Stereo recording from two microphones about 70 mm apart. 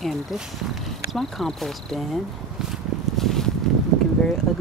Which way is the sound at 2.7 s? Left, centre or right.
Centre.